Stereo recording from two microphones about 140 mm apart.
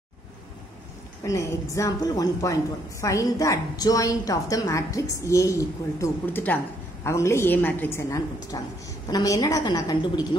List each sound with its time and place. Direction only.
1.2 s a woman's voice: 25° left (ahead or behind)